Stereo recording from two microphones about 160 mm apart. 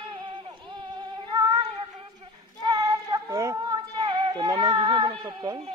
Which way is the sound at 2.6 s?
25° right (ahead or behind).